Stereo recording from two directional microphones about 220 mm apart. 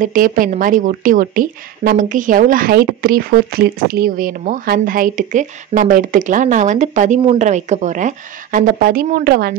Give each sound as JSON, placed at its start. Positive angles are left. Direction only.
{"t": 0.0, "sound": "a woman's voice", "side_deg": -40}